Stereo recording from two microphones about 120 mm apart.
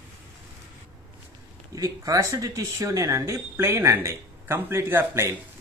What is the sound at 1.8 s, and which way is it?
Speech, 30° right (ahead or behind).